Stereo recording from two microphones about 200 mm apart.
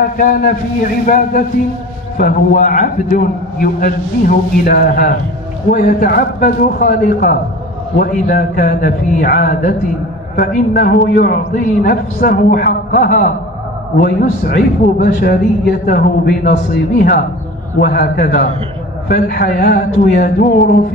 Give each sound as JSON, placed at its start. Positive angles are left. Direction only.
{"t": 0.2, "sound": "a man's voice", "side_deg": 40}
{"t": 17.7, "sound": "a man's voice", "side_deg": 50}